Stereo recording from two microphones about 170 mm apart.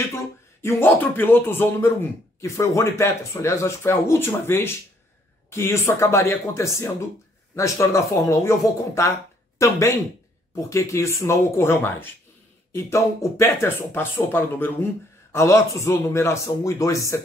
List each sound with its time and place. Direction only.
0.1 s speech: 15° left (ahead or behind)